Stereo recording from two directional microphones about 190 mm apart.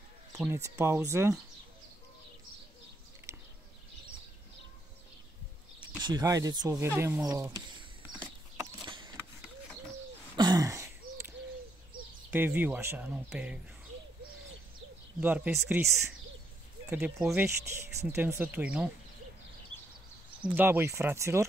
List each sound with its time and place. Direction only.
0.5 s speech: 15° right (ahead or behind)
5.9 s speech: 20° right (ahead or behind)
8.1 s horse: 5° right (ahead or behind)
8.8 s a sound: 25° right (ahead or behind)
10.3 s throat clearing: 20° right (ahead or behind)
12.3 s speech: 10° right (ahead or behind)
15.1 s speech: 10° right (ahead or behind)
20.5 s speech: 10° right (ahead or behind)